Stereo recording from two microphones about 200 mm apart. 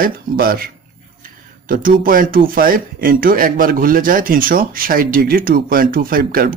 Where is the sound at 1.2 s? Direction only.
45° right (ahead or behind).